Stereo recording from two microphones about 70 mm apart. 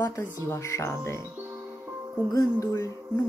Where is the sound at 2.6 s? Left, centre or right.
Left.